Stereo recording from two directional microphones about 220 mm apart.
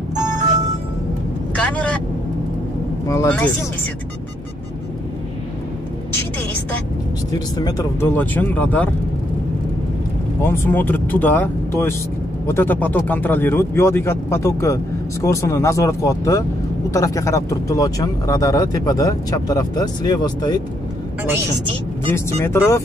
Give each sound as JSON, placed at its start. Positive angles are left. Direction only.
{"t": 1.5, "sound": "vehicle", "side_deg": 5}
{"t": 3.1, "sound": "speech", "side_deg": 10}
{"t": 7.3, "sound": "speech", "side_deg": 15}
{"t": 10.4, "sound": "speech", "side_deg": 10}
{"t": 22.1, "sound": "speech", "side_deg": 10}